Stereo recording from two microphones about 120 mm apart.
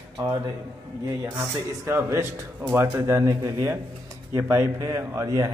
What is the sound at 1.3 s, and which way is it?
Speech, 20° right (ahead or behind).